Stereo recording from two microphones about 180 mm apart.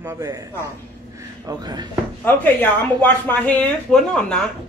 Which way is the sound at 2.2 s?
10° left (ahead or behind).